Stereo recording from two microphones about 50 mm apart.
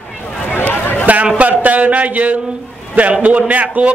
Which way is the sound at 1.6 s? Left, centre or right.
Right.